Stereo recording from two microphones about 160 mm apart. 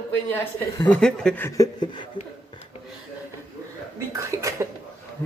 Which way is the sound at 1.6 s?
30° left (ahead or behind).